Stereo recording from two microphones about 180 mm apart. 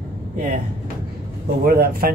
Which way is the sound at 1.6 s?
55° right (ahead or behind).